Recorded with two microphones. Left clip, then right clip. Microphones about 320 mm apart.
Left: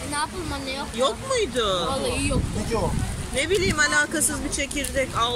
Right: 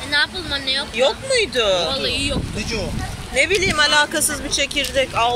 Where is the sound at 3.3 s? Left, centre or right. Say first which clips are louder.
Right 6 dB; right.